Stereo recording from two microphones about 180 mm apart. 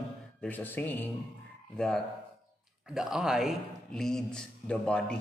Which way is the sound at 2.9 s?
5° right (ahead or behind).